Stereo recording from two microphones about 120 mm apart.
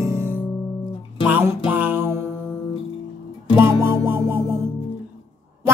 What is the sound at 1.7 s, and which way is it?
Music, 15° right (ahead or behind).